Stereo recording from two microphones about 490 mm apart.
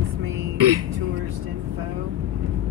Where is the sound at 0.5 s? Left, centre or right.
Right.